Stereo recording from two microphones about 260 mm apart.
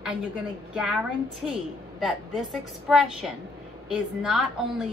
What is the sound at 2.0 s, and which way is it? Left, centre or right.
A woman's voice, centre.